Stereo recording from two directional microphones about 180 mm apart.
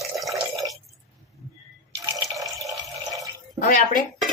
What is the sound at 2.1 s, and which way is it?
Water, 20° right (ahead or behind).